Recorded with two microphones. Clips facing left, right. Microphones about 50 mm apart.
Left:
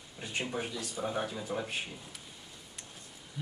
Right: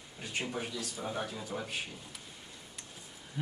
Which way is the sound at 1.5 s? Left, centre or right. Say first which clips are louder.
Left 3 dB; left.